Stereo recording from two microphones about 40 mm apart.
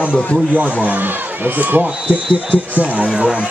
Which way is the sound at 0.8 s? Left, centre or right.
Right.